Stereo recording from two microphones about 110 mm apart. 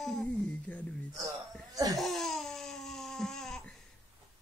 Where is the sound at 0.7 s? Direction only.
15° left (ahead or behind).